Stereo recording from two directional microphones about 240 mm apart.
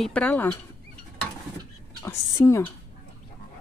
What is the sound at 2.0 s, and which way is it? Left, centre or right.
Speech, centre.